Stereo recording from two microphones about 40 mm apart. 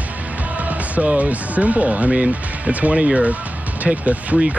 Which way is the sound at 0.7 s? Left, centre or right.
Right.